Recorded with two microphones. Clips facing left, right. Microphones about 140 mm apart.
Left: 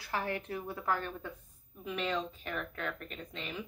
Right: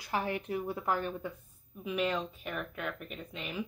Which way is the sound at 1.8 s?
5° right (ahead or behind).